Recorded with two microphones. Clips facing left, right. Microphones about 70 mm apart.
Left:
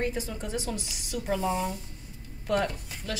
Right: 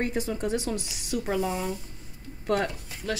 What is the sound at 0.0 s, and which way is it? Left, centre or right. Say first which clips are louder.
Speech: right 3 dB; right.